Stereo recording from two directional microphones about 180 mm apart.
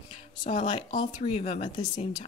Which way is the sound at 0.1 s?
35° left (ahead or behind).